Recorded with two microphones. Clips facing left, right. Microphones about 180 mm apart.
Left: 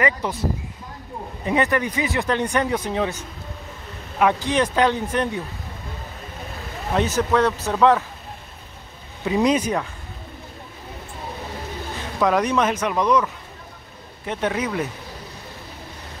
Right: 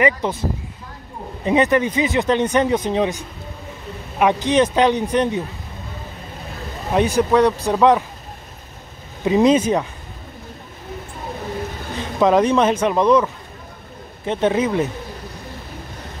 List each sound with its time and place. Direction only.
0.0 s speech: 20° right (ahead or behind)
1.4 s speech: 20° right (ahead or behind)
6.9 s speech: 15° right (ahead or behind)
9.2 s speech: 25° right (ahead or behind)
12.2 s speech: 25° right (ahead or behind)